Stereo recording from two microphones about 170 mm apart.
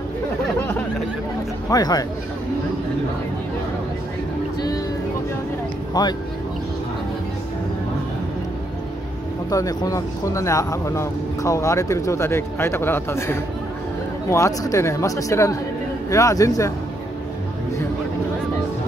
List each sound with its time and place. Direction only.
1.7 s a man's voice: 25° left (ahead or behind)
6.0 s a man's voice: 25° left (ahead or behind)
9.5 s a man's voice: 20° left (ahead or behind)